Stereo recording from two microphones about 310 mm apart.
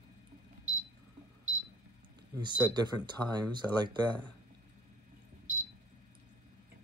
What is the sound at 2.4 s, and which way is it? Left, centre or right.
Speech, centre.